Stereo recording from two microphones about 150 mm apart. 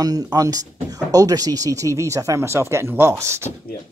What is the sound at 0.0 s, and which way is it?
Speech, 25° right (ahead or behind).